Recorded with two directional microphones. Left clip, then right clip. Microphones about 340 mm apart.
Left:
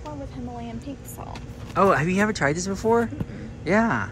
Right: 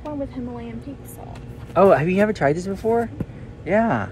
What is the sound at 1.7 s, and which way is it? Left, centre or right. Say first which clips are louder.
Speech: right 5 dB; centre.